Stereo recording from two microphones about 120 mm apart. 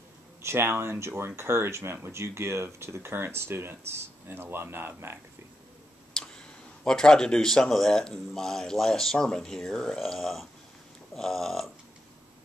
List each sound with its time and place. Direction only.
0.4 s speech: 20° right (ahead or behind)
6.1 s speech: 5° left (ahead or behind)